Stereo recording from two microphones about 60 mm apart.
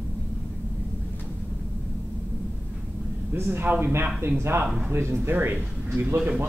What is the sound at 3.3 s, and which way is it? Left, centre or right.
Speech, right.